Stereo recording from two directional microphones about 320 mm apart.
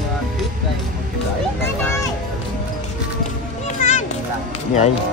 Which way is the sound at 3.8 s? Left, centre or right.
Left.